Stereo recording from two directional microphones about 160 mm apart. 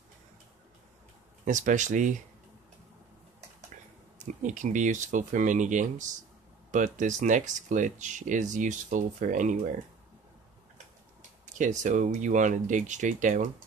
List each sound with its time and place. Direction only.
1.4 s speech: 50° right (ahead or behind)
4.2 s speech: 50° right (ahead or behind)
11.5 s speech: 50° right (ahead or behind)